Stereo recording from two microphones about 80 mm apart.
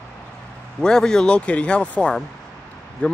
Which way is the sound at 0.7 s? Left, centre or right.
Centre.